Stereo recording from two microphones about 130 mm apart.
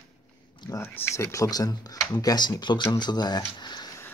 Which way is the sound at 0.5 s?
25° left (ahead or behind).